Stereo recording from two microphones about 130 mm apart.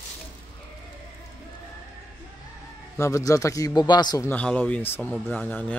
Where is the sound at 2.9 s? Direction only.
25° left (ahead or behind).